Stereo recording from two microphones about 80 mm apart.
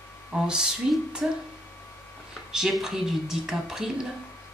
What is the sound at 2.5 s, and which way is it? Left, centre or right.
A woman's voice, centre.